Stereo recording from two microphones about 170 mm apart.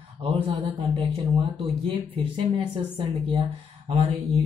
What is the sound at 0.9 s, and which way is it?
Speech, 30° right (ahead or behind).